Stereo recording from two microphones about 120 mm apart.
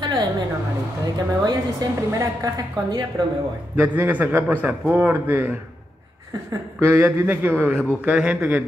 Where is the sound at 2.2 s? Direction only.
30° right (ahead or behind).